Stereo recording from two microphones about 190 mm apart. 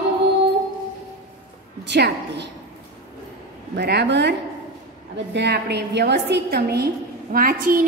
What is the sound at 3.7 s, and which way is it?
A woman's voice, 65° right (ahead or behind).